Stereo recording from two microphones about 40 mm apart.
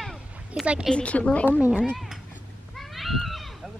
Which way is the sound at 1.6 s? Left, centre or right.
Right.